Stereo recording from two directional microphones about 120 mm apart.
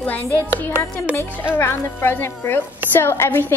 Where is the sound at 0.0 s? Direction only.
15° left (ahead or behind).